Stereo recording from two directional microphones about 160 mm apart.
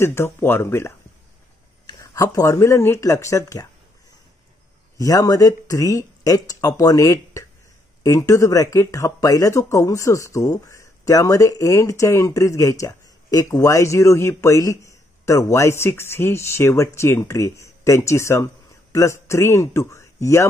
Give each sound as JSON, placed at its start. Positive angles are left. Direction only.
{"t": 0.0, "sound": "speech", "side_deg": 15}
{"t": 4.9, "sound": "speech", "side_deg": 20}